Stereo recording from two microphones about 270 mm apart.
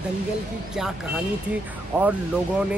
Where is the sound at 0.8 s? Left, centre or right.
Centre.